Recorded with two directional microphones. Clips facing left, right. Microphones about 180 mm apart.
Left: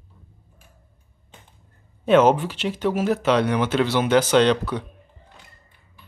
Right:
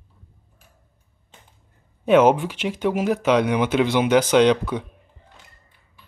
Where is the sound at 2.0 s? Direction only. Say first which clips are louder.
Right 1 dB; 10° right (ahead or behind).